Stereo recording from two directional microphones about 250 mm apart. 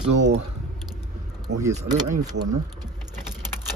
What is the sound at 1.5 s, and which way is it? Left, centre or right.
Speech, right.